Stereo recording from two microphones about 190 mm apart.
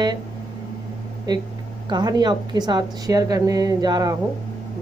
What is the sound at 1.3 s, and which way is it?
Speech, 20° right (ahead or behind).